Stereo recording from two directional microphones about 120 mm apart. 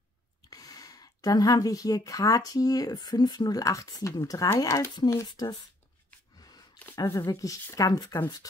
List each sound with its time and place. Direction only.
0.5 s speech: 30° left (ahead or behind)
5.3 s speech: 40° left (ahead or behind)
7.0 s speech: 30° left (ahead or behind)